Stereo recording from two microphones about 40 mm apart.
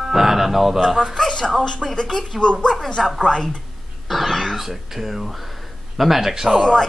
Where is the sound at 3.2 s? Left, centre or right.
Centre.